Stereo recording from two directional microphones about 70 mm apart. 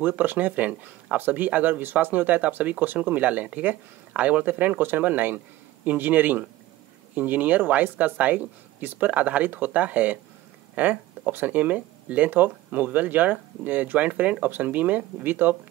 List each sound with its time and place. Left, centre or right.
0.0 s speech: right